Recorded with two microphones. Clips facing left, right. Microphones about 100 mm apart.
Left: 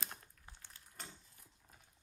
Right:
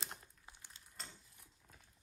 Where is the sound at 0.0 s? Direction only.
20° right (ahead or behind).